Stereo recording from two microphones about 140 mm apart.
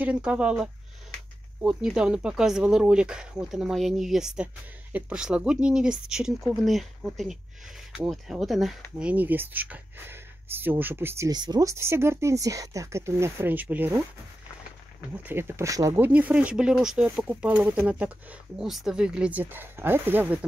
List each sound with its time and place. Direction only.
0.0 s speech: 10° right (ahead or behind)
9.0 s speech: 10° right (ahead or behind)
15.2 s speech: 15° right (ahead or behind)
16.1 s speech: 10° right (ahead or behind)